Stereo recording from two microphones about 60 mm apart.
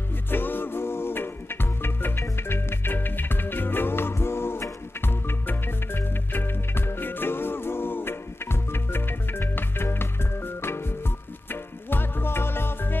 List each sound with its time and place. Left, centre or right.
0.3 s music: left